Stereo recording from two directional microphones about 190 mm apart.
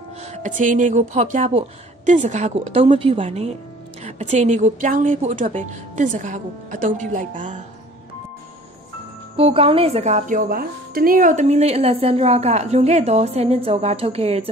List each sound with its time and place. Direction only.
0.2 s speech: 35° right (ahead or behind)
9.4 s speech: 30° right (ahead or behind)